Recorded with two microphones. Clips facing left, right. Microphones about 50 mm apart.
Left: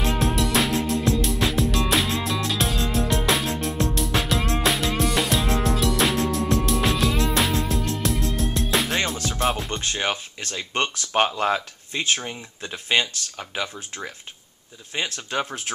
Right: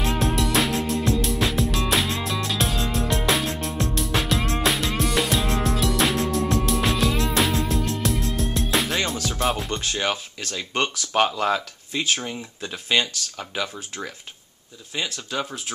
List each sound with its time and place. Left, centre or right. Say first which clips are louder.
0.0 s music: even; centre
9.8 s speech: even; centre
12.2 s speech: right 2 dB; centre
14.9 s speech: left 1 dB; left